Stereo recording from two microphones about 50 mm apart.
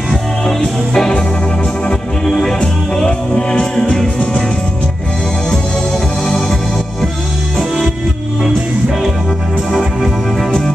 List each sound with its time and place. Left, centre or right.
0.6 s music: centre
2.2 s music: centre
7.5 s music: centre
9.7 s music: centre